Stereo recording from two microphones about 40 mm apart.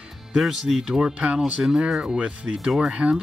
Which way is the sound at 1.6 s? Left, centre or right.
Centre.